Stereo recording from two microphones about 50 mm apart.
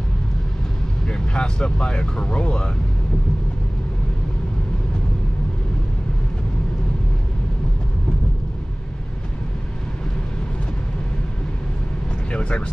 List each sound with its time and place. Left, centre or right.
1.0 s speech: centre
12.3 s vehicle: left